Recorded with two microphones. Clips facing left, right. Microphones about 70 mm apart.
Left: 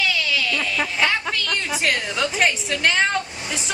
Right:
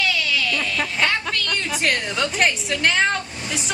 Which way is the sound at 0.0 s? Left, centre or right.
Centre.